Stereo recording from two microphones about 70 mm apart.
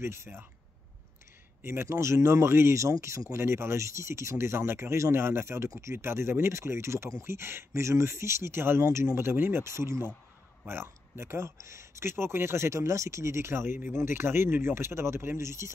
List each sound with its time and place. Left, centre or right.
0.0 s speech: right
1.6 s speech: right